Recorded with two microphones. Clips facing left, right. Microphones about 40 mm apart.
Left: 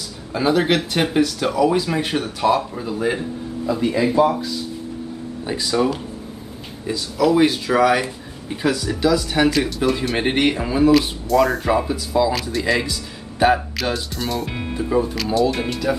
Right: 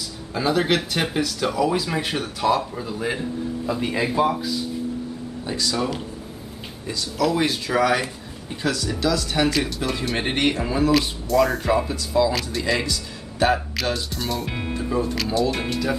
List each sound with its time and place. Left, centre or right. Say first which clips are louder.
0.3 s speech: left 3 dB; centre
3.8 s speech: left 5 dB; centre
5.4 s speech: left 5 dB; centre
14.7 s speech: left 4 dB; centre